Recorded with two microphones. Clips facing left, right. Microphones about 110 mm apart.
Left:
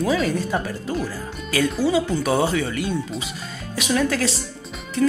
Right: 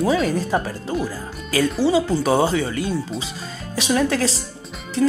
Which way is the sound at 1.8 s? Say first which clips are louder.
Right 4 dB; 30° right (ahead or behind).